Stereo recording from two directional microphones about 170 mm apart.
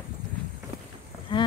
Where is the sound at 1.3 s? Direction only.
30° left (ahead or behind).